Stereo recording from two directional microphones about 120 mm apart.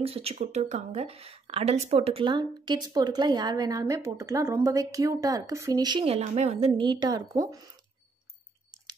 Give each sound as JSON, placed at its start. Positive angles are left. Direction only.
{"t": 0.0, "sound": "speech", "side_deg": -55}
{"t": 2.2, "sound": "a woman's voice", "side_deg": -40}
{"t": 6.0, "sound": "speech", "side_deg": -60}
{"t": 6.8, "sound": "a woman's voice", "side_deg": -40}